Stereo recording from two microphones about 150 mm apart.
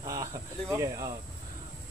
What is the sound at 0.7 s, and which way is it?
Speech, 20° right (ahead or behind).